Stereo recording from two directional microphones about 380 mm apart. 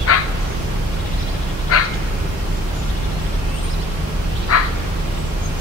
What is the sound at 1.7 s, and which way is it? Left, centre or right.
Dog, left.